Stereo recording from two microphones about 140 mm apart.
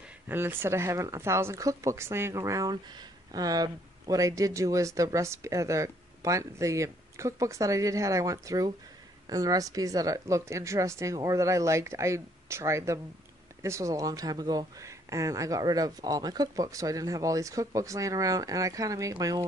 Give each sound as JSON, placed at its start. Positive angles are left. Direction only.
{"t": 0.3, "sound": "speech", "side_deg": -15}